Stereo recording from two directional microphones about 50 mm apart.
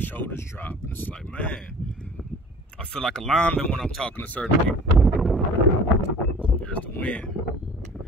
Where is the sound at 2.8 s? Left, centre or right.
Centre.